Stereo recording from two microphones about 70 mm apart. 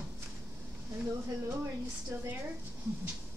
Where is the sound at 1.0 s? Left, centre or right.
Right.